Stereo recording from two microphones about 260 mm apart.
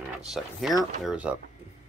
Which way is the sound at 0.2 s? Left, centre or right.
Centre.